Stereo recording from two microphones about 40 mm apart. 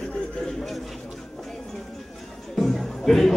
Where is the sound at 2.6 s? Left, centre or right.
Centre.